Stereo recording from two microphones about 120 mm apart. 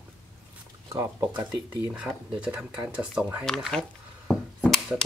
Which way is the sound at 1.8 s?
10° right (ahead or behind).